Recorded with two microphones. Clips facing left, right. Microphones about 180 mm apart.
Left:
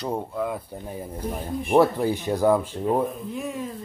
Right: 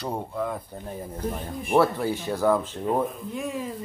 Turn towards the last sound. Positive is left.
turn(degrees=0)  # may be behind; listen again after turning